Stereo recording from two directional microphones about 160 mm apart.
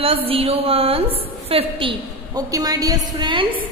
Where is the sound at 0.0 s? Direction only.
35° right (ahead or behind).